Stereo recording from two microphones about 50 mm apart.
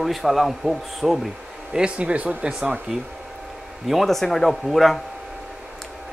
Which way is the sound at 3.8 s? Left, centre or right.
Centre.